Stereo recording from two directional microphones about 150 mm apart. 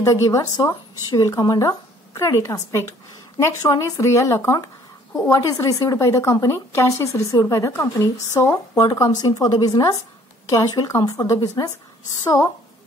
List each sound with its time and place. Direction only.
0.0 s a woman's voice: 20° left (ahead or behind)